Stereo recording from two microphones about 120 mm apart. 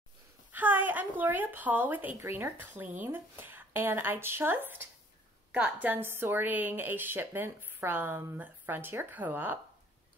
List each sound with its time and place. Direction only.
0.5 s a woman's voice: 15° right (ahead or behind)